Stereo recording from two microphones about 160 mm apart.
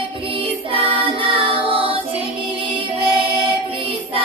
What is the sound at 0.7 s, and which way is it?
Music, 35° right (ahead or behind).